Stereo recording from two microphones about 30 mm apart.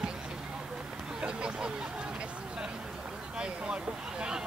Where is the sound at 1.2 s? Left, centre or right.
Right.